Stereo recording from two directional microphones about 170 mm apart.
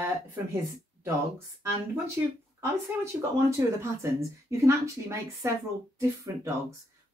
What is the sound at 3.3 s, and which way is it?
Speech, 15° right (ahead or behind).